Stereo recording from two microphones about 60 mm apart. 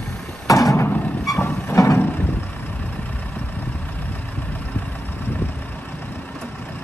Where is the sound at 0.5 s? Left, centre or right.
Left.